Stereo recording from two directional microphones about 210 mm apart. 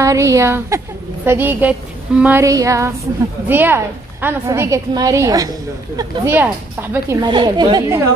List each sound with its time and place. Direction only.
0.0 s a woman's voice: 15° right (ahead or behind)